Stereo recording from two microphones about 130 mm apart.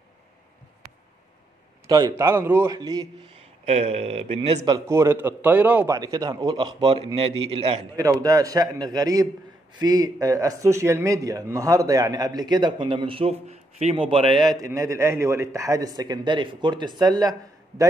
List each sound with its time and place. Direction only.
1.9 s speech: 30° right (ahead or behind)
3.6 s a man's voice: 55° right (ahead or behind)
4.6 s a man's voice: 25° right (ahead or behind)
5.9 s a man's voice: 30° right (ahead or behind); by 7.8 s 45° right (ahead or behind)
7.9 s speech: 25° right (ahead or behind)